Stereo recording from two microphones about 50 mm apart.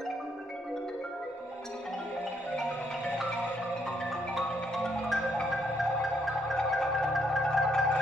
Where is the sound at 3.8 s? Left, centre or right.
Centre.